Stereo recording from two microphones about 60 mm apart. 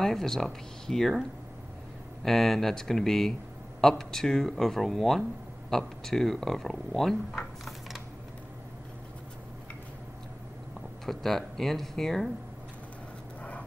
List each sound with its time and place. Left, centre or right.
0.0 s speech: centre
2.2 s speech: centre
11.1 s speech: centre
13.4 s vehicle: left